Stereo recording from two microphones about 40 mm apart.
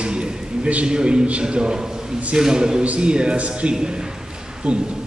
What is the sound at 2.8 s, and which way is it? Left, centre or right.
Speech, right.